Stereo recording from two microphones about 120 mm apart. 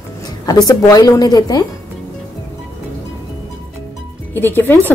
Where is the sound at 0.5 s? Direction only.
30° left (ahead or behind).